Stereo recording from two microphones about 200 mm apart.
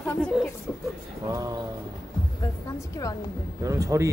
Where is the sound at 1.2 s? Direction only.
20° right (ahead or behind).